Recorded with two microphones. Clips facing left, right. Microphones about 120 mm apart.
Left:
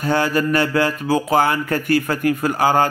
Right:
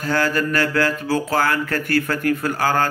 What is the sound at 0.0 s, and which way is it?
A man's voice, 20° left (ahead or behind).